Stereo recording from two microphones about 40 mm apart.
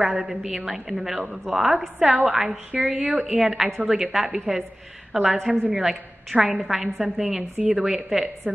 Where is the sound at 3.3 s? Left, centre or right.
Centre.